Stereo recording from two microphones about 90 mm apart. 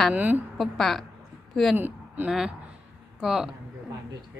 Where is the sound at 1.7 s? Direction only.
20° right (ahead or behind).